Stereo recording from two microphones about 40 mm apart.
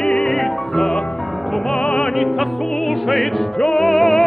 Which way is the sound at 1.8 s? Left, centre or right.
Left.